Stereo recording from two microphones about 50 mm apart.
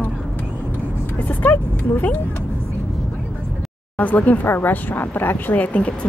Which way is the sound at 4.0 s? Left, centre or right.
Left.